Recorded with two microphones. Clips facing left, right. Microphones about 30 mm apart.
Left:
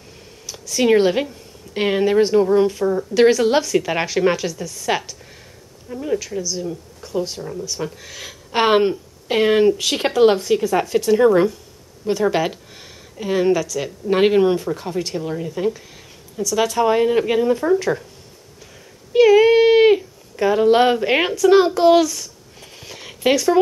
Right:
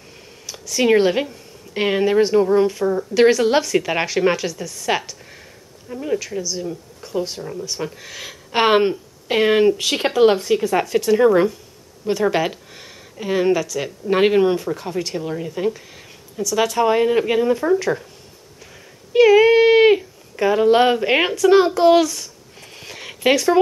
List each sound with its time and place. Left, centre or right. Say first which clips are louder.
0.5 s speech: even; centre
19.1 s speech: even; centre